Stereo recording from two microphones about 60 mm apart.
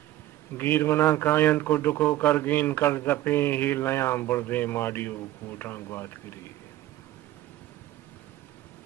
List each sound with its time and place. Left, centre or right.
0.6 s speech: left
1.2 s speech: left